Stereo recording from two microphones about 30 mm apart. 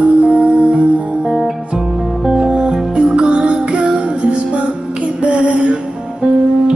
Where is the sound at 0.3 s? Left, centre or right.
Right.